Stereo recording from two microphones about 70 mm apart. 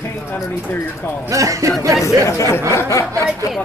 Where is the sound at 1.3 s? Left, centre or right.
Right.